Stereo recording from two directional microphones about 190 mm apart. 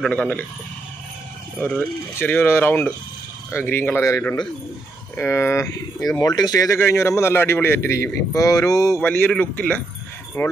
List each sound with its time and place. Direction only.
0.0 s speech: 5° left (ahead or behind)
2.1 s a man's voice: 10° left (ahead or behind)
5.9 s speech: centre (ahead or behind)
6.2 s a man's voice: 20° left (ahead or behind)